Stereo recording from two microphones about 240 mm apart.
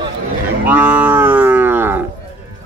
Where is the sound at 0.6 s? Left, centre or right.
Centre.